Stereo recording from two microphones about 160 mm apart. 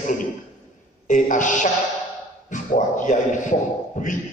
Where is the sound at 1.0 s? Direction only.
50° left (ahead or behind).